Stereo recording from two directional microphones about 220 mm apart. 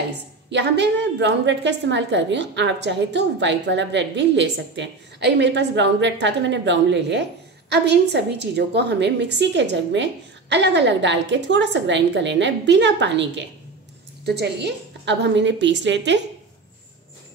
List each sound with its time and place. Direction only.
0.5 s a woman's voice: 50° right (ahead or behind)